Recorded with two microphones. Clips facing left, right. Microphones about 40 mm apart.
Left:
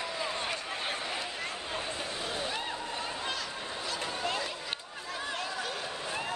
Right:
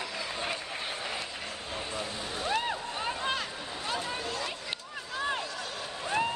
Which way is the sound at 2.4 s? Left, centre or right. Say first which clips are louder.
Right 4 dB; right.